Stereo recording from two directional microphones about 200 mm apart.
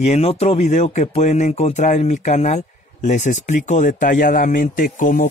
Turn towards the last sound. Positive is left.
turn(degrees=40)  # may be behind; listen again after turning